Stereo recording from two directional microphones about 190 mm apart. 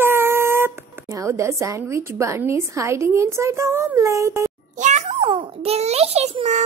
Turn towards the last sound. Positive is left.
turn(degrees=-35)  # may be behind; listen again after turning